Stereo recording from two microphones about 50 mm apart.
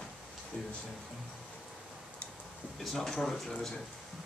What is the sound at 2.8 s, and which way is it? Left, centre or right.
Speech, centre.